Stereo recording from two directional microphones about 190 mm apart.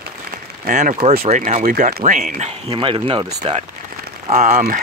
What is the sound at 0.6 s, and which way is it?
Speech, 40° right (ahead or behind).